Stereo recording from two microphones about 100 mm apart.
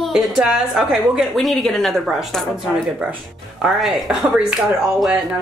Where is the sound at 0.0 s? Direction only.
Centre (ahead or behind).